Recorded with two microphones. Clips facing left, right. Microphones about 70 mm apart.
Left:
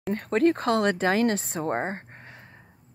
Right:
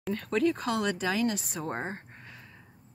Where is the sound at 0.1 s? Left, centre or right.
Left.